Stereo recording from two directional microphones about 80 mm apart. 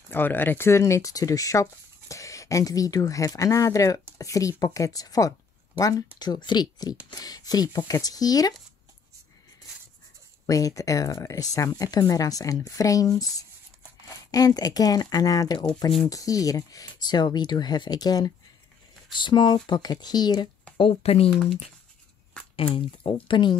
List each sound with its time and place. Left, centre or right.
0.1 s speech: left
10.4 s speech: left
16.9 s speech: left
19.1 s speech: left
22.3 s a sound: centre
22.8 s speech: left